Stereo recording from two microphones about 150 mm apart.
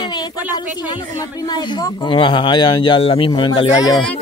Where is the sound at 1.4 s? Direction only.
30° left (ahead or behind).